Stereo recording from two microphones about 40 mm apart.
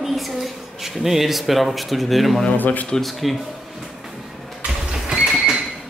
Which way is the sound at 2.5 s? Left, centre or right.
Left.